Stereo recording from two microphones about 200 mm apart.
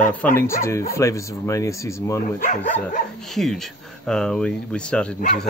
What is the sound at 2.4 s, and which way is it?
Speech, 40° left (ahead or behind).